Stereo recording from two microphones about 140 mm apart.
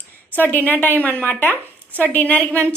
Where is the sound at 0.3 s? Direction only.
15° left (ahead or behind).